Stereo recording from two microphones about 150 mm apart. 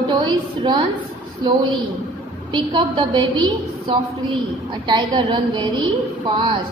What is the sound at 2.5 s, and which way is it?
Speech, 35° right (ahead or behind).